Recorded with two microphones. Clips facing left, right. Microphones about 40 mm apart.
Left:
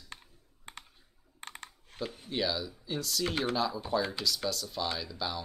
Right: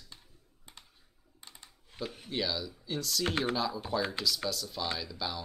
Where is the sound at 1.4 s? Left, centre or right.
Left.